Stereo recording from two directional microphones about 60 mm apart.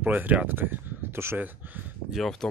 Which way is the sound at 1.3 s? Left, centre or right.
Right.